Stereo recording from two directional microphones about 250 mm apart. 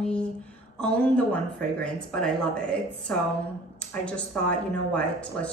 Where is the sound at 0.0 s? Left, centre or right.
Centre.